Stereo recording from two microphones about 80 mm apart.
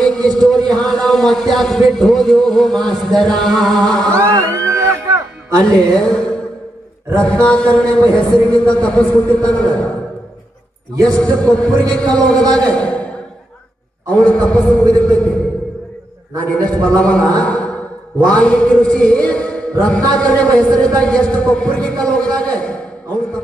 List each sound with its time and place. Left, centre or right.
0.3 s a sound: centre
0.7 s a man's voice: centre
4.1 s music: right
5.6 s speech: centre
11.1 s speech: centre
12.7 s a sound: centre
14.1 s speech: centre
16.4 s speech: centre
17.4 s a sound: centre
18.3 s a man's voice: centre